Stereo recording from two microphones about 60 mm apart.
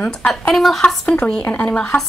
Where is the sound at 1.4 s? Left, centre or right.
Left.